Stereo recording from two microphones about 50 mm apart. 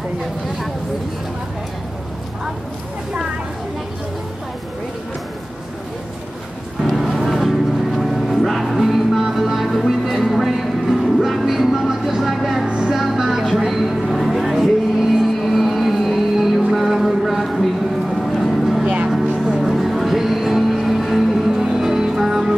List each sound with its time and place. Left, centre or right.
6.8 s vehicle: centre
12.6 s music: centre
13.0 s a sound: centre
18.1 s vehicle: centre
19.4 s music: centre
19.7 s music: centre